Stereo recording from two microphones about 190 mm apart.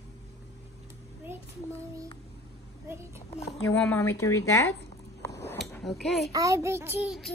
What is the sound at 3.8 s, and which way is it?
Speech, 10° left (ahead or behind).